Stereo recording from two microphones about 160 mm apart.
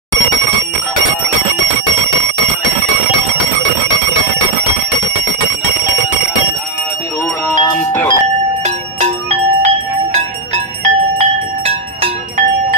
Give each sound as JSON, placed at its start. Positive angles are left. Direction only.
{"t": 7.4, "sound": "music", "side_deg": 10}
{"t": 8.6, "sound": "music", "side_deg": -45}